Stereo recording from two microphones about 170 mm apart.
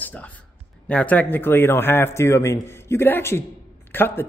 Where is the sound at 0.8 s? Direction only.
10° left (ahead or behind).